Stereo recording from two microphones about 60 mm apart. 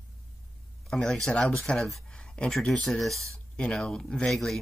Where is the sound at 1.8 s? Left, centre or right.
Centre.